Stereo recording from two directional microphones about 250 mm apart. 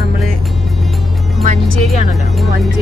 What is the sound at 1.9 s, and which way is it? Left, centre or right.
Speech, centre.